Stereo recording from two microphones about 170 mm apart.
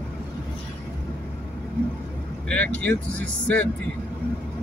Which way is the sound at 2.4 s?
10° left (ahead or behind).